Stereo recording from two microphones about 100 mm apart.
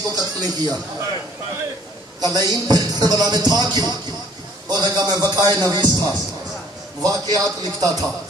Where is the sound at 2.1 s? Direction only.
40° right (ahead or behind).